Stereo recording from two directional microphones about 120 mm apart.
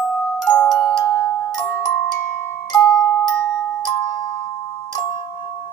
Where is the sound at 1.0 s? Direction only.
25° left (ahead or behind).